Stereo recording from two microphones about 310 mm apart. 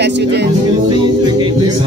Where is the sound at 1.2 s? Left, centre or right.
Centre.